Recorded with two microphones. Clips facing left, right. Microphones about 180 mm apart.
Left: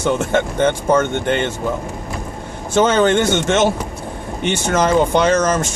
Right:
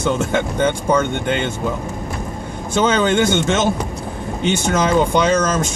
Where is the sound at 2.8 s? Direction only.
50° left (ahead or behind).